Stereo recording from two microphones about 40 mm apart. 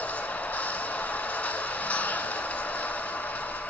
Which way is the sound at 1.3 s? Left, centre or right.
Left.